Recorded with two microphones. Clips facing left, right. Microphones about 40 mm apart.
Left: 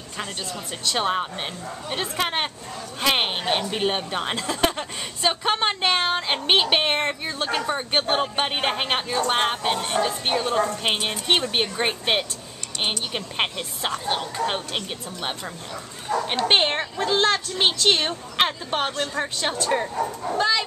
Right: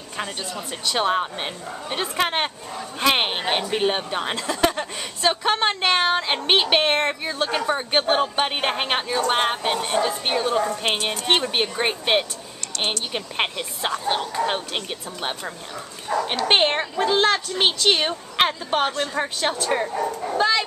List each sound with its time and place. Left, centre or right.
0.5 s a woman's voice: centre
10.0 s speech: centre
12.7 s speech: centre
14.1 s a woman's voice: centre
16.1 s dog: right
16.4 s a woman's voice: centre